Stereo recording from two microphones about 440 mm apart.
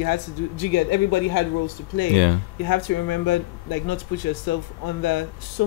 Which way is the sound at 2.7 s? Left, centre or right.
Left.